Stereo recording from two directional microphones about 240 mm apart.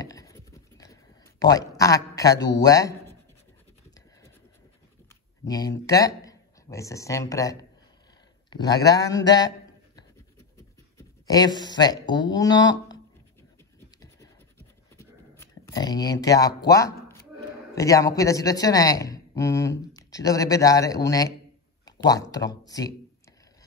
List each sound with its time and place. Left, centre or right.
0.0 s a sound: centre
1.4 s a man's voice: centre
5.5 s a man's voice: centre
11.0 s a man's voice: centre
15.0 s a sound: centre
17.7 s a man's voice: centre